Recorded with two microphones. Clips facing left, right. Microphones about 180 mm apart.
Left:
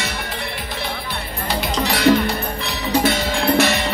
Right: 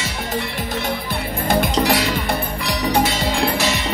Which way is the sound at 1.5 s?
50° right (ahead or behind).